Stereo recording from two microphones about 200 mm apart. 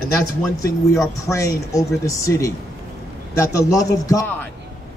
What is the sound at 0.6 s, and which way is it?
A man's voice, 15° left (ahead or behind).